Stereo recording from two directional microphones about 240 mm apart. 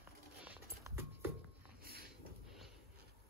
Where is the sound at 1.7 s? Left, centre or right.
Right.